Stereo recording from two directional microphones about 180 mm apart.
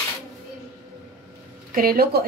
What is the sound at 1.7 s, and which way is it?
Speech, 55° right (ahead or behind).